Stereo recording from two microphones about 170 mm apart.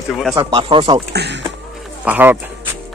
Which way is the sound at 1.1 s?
85° right.